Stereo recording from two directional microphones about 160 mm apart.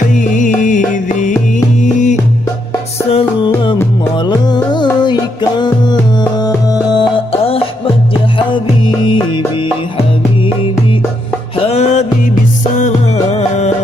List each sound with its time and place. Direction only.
0.1 s music: 50° left (ahead or behind)
3.1 s music: 35° left (ahead or behind)
11.6 s music: 45° left (ahead or behind)